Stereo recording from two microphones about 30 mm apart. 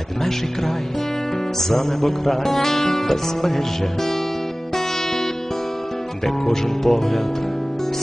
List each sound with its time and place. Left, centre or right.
1.6 s music: centre
6.2 s music: centre